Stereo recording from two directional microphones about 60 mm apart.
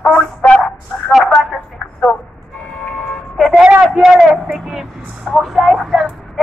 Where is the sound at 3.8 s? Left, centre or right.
Centre.